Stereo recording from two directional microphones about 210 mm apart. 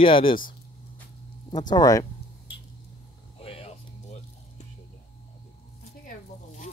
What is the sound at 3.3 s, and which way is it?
Music, 30° left (ahead or behind).